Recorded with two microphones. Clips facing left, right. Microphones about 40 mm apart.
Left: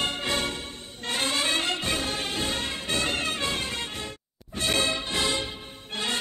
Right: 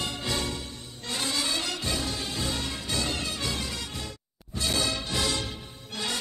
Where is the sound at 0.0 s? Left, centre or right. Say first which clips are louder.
Left 3 dB; left.